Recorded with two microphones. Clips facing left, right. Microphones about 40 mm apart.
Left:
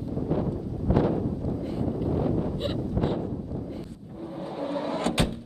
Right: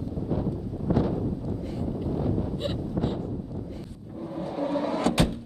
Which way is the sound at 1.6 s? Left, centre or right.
Centre.